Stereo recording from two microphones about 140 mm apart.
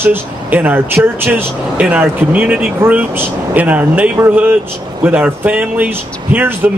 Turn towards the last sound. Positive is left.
turn(degrees=-15)  # may be behind; listen again after turning